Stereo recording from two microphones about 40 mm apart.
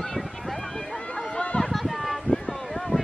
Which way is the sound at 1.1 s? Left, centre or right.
Left.